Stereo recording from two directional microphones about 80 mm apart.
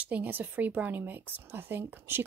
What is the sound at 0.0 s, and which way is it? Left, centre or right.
Speech, right.